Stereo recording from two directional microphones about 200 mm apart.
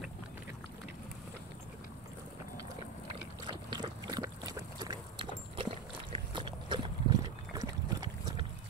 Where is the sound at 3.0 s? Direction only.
25° right (ahead or behind).